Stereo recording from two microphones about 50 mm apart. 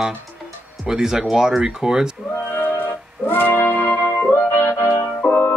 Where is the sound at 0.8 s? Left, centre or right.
Centre.